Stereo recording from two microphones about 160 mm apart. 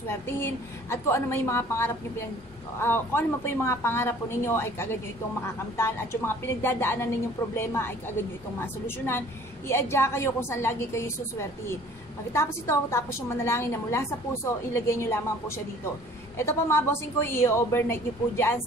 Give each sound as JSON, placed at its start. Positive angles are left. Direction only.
{"t": 0.0, "sound": "a woman's voice", "side_deg": 15}